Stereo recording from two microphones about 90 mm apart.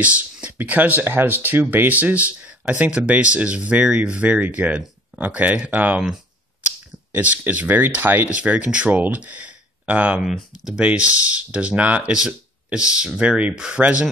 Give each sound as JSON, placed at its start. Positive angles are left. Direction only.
{"t": 0.0, "sound": "speech", "side_deg": -15}
{"t": 7.1, "sound": "speech", "side_deg": -20}
{"t": 10.2, "sound": "speech", "side_deg": -5}